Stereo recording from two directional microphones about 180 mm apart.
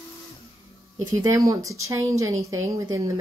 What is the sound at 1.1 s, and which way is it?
Speech, 20° right (ahead or behind).